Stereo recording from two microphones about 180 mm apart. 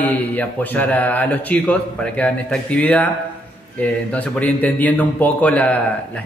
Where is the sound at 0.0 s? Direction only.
10° left (ahead or behind).